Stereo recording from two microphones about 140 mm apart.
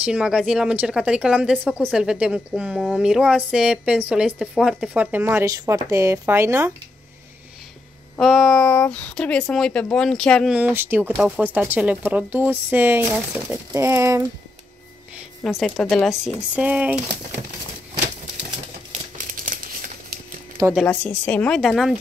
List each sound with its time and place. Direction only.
0.0 s a woman's voice: 5° right (ahead or behind)
8.2 s speech: centre (ahead or behind)
10.5 s a woman's voice: 15° right (ahead or behind)
15.4 s a woman's voice: 5° left (ahead or behind)
16.5 s a woman's voice: 10° right (ahead or behind)
19.3 s crumpling: 75° right (ahead or behind)
20.6 s speech: 25° right (ahead or behind)
21.0 s a woman's voice: 10° left (ahead or behind)